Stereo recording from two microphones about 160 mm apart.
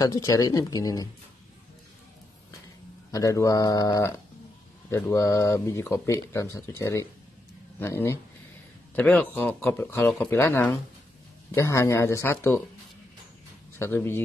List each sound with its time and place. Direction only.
0.0 s speech: 20° left (ahead or behind)
3.1 s speech: 20° left (ahead or behind)
13.7 s speech: 15° left (ahead or behind)